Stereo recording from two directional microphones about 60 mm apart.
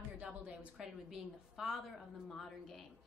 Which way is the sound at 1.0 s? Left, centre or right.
Centre.